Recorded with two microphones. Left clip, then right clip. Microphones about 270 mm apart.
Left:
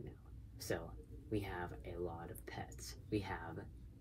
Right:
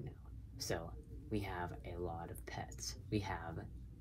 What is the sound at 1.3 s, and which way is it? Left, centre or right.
Speech, centre.